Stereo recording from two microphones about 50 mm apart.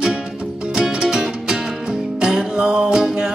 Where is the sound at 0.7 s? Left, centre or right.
Centre.